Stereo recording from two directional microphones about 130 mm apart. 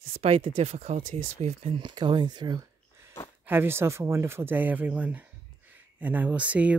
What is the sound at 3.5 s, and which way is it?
Speech, 15° right (ahead or behind).